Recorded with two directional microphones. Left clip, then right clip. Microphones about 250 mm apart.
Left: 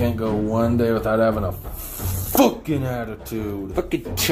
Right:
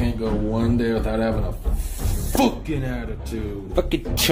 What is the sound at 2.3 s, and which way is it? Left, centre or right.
Speech, left.